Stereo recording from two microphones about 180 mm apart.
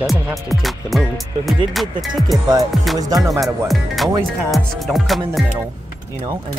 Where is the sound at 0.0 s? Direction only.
Centre (ahead or behind).